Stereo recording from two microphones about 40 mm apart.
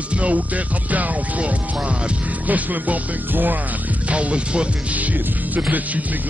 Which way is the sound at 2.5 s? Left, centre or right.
Right.